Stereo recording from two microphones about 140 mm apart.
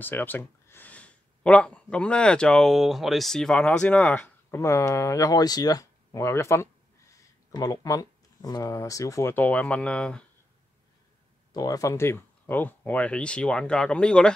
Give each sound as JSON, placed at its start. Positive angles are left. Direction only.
{"t": 0.0, "sound": "speech", "side_deg": 15}
{"t": 4.6, "sound": "speech", "side_deg": 20}
{"t": 11.5, "sound": "speech", "side_deg": 25}